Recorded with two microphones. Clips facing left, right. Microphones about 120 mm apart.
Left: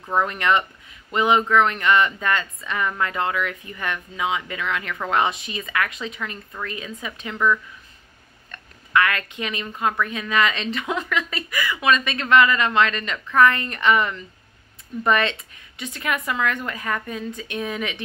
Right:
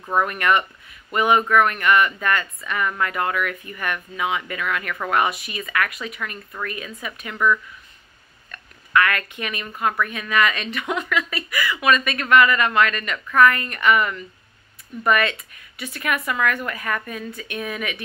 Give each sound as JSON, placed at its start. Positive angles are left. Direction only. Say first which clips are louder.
{"t": 0.2, "sound": "speech", "louder": "even", "side_deg": 20}
{"t": 8.5, "sound": "a sound", "louder": "even", "side_deg": 20}
{"t": 10.0, "sound": "speech", "louder": "even", "side_deg": 25}